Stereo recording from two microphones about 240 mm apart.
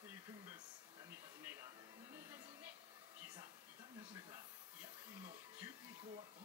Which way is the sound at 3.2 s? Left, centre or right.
Centre.